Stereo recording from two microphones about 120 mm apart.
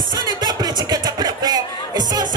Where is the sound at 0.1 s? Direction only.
35° right (ahead or behind).